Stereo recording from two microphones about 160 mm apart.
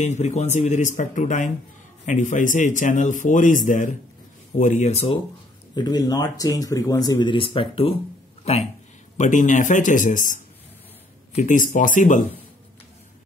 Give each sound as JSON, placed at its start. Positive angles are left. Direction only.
{"t": 0.0, "sound": "a man's voice", "side_deg": 45}
{"t": 5.8, "sound": "speech", "side_deg": 25}
{"t": 9.1, "sound": "a man's voice", "side_deg": 50}